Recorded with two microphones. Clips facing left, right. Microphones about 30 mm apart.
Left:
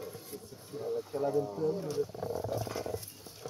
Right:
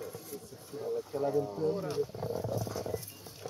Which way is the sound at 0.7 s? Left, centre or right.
Centre.